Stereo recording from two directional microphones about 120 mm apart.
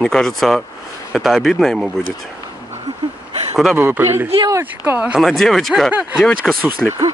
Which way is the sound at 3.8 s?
20° right (ahead or behind).